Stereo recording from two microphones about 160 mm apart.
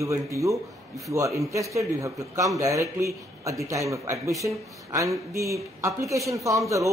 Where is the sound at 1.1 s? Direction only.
20° right (ahead or behind).